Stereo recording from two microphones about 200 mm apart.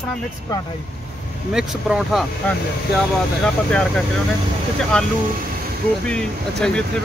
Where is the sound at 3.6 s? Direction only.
5° left (ahead or behind).